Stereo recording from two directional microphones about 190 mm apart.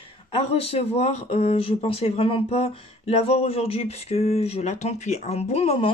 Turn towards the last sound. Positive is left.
turn(degrees=35)  # may be behind; listen again after turning